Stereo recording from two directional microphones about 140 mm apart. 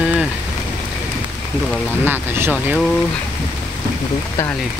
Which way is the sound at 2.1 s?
15° right (ahead or behind).